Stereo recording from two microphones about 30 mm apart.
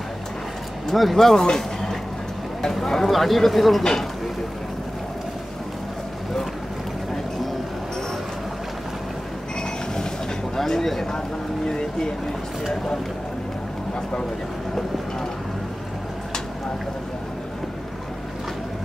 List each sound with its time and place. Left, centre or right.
0.9 s speech: centre
1.3 s speech: centre
3.1 s speech: centre
10.5 s speech: centre
11.1 s vehicle: left